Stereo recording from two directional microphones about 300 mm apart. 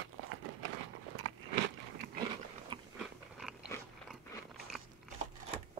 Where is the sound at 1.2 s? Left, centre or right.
Right.